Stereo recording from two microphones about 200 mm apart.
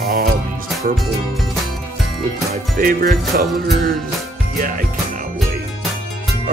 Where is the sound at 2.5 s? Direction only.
45° right (ahead or behind).